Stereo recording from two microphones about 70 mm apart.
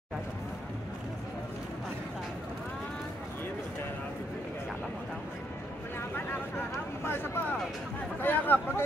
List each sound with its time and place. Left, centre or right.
7.1 s speech: left